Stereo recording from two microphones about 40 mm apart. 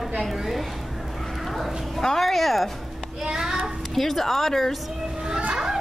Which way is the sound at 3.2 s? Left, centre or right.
Centre.